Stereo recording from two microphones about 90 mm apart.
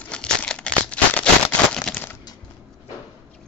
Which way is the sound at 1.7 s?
5° left (ahead or behind).